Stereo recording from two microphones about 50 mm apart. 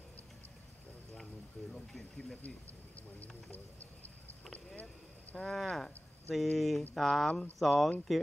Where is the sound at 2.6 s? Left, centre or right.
Left.